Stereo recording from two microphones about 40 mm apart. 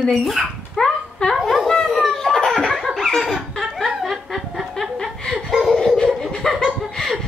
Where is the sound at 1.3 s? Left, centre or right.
Centre.